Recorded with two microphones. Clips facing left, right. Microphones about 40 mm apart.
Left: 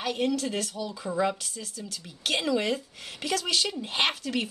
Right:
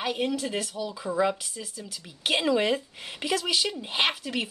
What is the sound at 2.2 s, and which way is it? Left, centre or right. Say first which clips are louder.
Speech: right 3 dB; centre.